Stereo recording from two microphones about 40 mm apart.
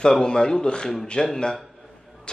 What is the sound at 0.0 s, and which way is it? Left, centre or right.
Speech, centre.